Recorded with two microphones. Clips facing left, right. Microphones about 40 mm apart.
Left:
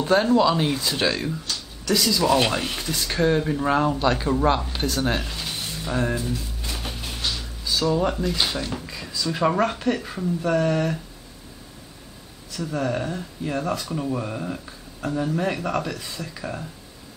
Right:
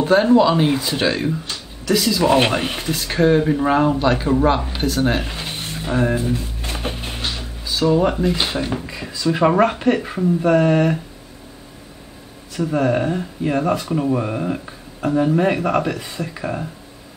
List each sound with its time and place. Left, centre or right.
0.0 s speech: centre
2.2 s speech: right
5.3 s speech: right
6.6 s music: right
7.6 s speech: centre
12.5 s speech: right